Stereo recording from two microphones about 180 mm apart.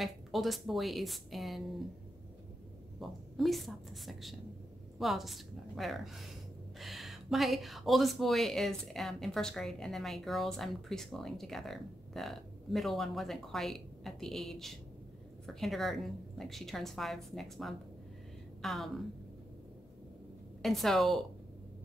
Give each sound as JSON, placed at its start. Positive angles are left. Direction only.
{"t": 0.0, "sound": "speech", "side_deg": 0}
{"t": 3.0, "sound": "speech", "side_deg": 0}
{"t": 20.6, "sound": "speech", "side_deg": 0}